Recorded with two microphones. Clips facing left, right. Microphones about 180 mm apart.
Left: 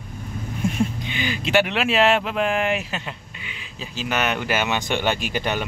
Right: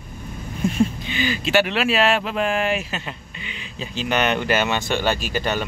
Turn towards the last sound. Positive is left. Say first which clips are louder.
# right 1 dB
turn(degrees=15)  # may be behind; listen again after turning